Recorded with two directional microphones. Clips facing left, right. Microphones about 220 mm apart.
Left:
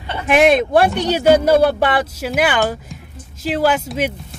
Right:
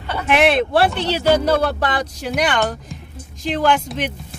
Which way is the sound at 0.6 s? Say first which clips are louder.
Left 2 dB; 15° left (ahead or behind).